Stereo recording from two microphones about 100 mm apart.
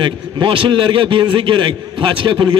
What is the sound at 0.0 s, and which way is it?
A man's voice, 60° right (ahead or behind).